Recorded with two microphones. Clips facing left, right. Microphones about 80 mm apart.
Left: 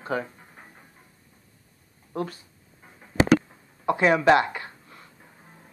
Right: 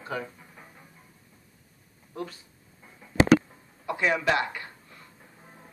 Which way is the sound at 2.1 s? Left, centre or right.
Left.